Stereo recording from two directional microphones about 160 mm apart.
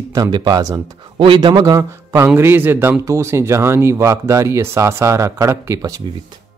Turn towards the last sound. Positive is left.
turn(degrees=-20)  # may be behind; listen again after turning